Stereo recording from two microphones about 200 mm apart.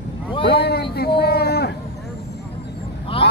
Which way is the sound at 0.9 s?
55° left (ahead or behind).